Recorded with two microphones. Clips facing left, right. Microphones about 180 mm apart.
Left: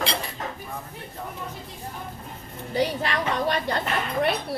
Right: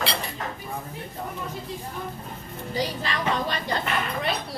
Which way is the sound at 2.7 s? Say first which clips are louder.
Left 4 dB; 60° left (ahead or behind).